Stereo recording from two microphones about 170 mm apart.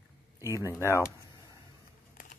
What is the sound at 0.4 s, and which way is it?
Speech, 15° right (ahead or behind).